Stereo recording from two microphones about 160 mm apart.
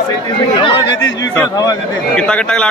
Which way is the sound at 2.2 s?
5° left (ahead or behind).